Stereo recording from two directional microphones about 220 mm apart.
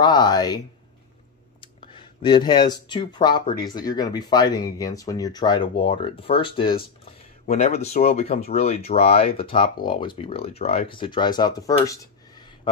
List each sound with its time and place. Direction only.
0.0 s speech: 20° left (ahead or behind)
2.2 s speech: 20° left (ahead or behind)
11.9 s a sound: 15° left (ahead or behind)